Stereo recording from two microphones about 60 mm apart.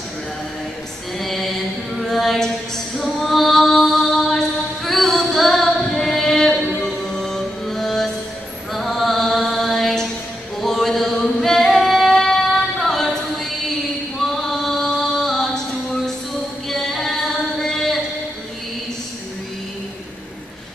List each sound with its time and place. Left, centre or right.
1.1 s music: centre
2.0 s singing: centre
8.7 s mantra: centre
10.6 s singing: centre
14.2 s music: centre